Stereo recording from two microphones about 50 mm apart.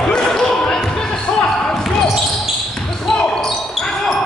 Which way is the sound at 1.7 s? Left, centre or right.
Centre.